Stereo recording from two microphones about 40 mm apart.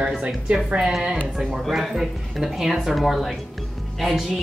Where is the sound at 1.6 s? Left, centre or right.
Centre.